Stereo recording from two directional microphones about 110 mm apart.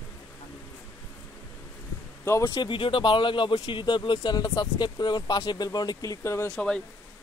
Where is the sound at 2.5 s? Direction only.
45° left (ahead or behind); by 6.5 s 25° left (ahead or behind).